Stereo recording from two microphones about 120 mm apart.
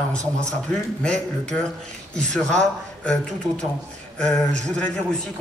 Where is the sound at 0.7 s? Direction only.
10° left (ahead or behind).